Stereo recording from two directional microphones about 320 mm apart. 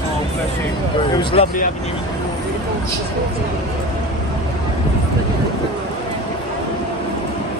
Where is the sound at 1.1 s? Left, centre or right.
Centre.